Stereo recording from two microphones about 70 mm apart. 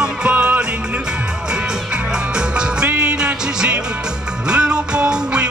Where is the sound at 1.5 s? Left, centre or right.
Centre.